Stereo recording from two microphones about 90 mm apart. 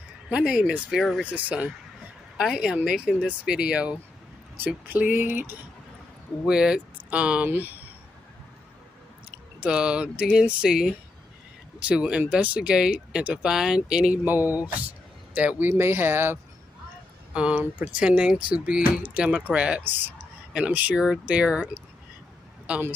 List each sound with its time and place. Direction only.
0.3 s speech: 10° right (ahead or behind)
1.2 s speech: 15° right (ahead or behind)
6.4 s speech: 10° right (ahead or behind)
9.6 s speech: 10° right (ahead or behind); by 16.3 s 25° right (ahead or behind)
17.3 s speech: 10° right (ahead or behind)
22.7 s speech: 20° right (ahead or behind)